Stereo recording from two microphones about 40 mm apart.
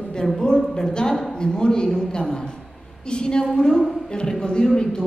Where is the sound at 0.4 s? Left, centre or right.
Centre.